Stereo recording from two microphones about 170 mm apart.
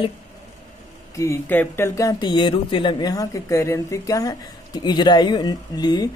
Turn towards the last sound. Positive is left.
turn(degrees=25)  # may be behind; listen again after turning